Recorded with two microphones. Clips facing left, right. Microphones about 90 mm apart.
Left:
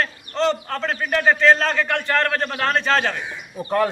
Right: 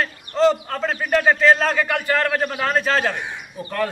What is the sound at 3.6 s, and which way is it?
Speech, 25° left (ahead or behind).